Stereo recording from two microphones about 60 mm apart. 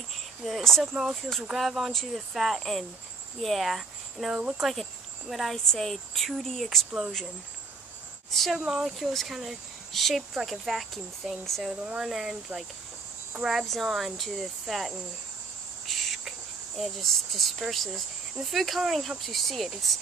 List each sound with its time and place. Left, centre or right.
0.4 s speech: centre
8.3 s speech: centre
8.5 s speech: centre
11.7 s speech: centre
12.0 s speech: centre
13.4 s speech: centre
15.9 s cricket: centre
18.4 s speech: centre